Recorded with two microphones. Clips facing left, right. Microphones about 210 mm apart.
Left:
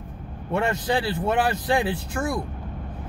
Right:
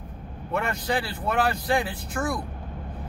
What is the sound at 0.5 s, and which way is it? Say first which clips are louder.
Speech: left 3 dB; 25° left (ahead or behind).